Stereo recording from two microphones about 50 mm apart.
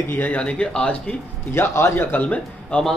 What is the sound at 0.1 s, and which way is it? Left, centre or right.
Speech, left.